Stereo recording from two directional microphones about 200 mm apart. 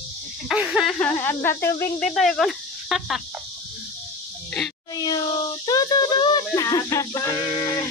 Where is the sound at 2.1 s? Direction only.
Centre (ahead or behind).